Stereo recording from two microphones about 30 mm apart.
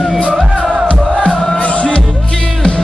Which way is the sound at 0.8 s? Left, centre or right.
Left.